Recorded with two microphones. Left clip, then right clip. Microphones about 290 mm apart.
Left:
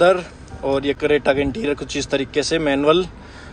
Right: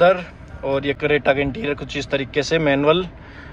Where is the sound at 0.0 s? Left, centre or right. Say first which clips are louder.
Even; centre.